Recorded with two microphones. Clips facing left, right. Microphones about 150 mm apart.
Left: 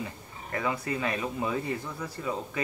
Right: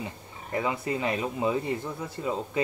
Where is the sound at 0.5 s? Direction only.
20° right (ahead or behind).